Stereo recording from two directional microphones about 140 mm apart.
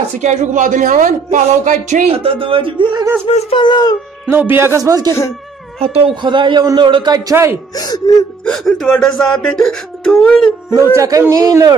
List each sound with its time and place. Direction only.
0.2 s a man's voice: 60° right (ahead or behind)
2.1 s a man's voice: 40° right (ahead or behind)
3.3 s speech: 45° left (ahead or behind)
4.3 s speech: 15° right (ahead or behind)
5.9 s a man's voice: 40° right (ahead or behind); by 7.5 s 20° right (ahead or behind)
7.7 s speech: 25° left (ahead or behind)
8.5 s speech: 5° left (ahead or behind)
11.0 s a man's voice: 20° right (ahead or behind)